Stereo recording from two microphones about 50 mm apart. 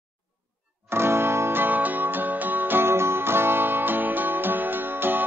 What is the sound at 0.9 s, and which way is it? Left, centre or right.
Music, right.